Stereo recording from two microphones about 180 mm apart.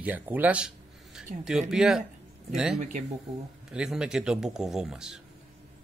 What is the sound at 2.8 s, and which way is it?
Speech, 45° right (ahead or behind).